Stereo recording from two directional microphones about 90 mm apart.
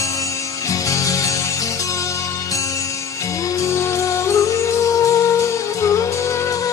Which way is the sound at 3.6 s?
35° left (ahead or behind).